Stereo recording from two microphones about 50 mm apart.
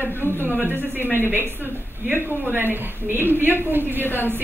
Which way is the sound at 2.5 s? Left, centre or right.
Right.